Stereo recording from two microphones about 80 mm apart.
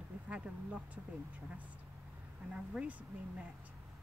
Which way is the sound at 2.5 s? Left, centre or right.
Centre.